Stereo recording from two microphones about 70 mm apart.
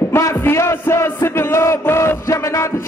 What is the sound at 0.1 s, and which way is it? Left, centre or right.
Music, left.